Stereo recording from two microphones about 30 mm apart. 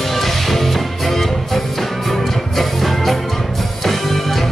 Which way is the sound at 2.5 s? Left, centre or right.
Centre.